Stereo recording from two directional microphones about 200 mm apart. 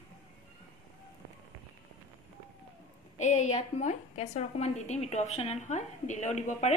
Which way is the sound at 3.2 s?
35° left (ahead or behind).